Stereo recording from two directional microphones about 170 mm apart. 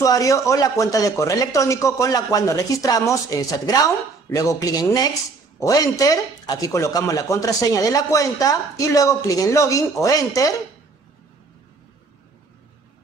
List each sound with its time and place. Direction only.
0.0 s speech: 20° left (ahead or behind)